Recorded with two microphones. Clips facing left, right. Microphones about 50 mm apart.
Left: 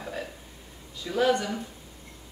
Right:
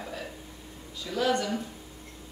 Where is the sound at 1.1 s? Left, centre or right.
Centre.